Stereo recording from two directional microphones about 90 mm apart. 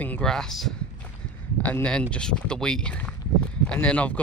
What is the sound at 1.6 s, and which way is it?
Speech, 15° left (ahead or behind).